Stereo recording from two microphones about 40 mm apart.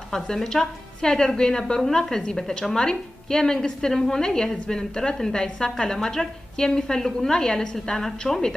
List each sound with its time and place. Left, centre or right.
0.1 s a woman's voice: centre